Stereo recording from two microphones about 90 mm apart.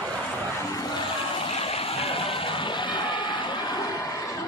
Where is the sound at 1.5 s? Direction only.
90° left; by 3.8 s 60° left (ahead or behind).